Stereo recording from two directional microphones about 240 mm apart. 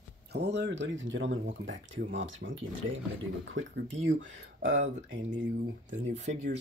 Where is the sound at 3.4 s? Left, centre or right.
Right.